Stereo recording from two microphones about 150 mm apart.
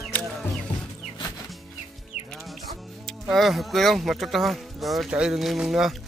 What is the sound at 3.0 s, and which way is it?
Speech, centre (ahead or behind).